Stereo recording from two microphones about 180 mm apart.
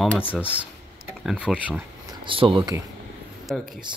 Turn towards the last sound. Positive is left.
turn(degrees=0)  # may be behind; listen again after turning